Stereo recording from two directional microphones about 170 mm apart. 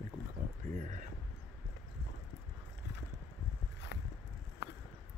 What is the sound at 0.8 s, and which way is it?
Speech, 50° right (ahead or behind).